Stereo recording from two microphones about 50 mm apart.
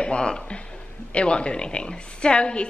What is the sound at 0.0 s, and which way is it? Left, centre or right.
A woman's voice, centre.